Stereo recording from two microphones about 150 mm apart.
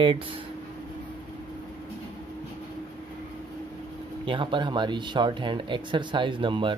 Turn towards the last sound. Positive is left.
turn(degrees=-35)  # may be behind; listen again after turning